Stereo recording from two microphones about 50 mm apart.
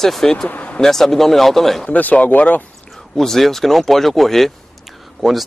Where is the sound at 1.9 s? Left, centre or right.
Left.